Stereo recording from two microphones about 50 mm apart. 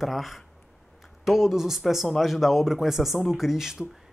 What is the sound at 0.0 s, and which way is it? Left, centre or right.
Speech, centre.